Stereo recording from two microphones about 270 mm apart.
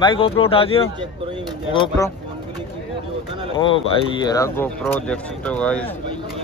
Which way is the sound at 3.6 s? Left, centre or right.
Centre.